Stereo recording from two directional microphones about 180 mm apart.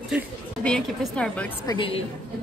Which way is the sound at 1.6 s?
30° left (ahead or behind).